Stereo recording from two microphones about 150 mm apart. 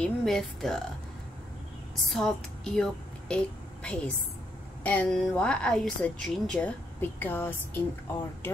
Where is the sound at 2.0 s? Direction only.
Centre (ahead or behind).